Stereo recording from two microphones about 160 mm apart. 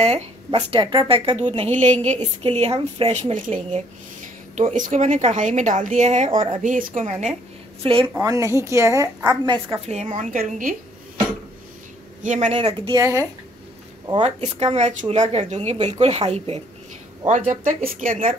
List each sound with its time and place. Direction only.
0.0 s speech: 40° right (ahead or behind)
4.6 s speech: 50° right (ahead or behind)
6.3 s speech: 35° right (ahead or behind)
6.6 s speech: 50° right (ahead or behind)
7.8 s speech: 35° right (ahead or behind)
8.1 s a woman's voice: 20° right (ahead or behind)
9.8 s speech: 45° right (ahead or behind)
12.2 s speech: 50° right (ahead or behind); by 13.0 s 30° right (ahead or behind)
13.0 s a woman's voice: 20° right (ahead or behind)
14.2 s speech: 40° right (ahead or behind)
17.3 s speech: 50° right (ahead or behind)